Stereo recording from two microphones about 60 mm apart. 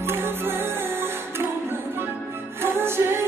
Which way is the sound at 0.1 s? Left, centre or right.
Right.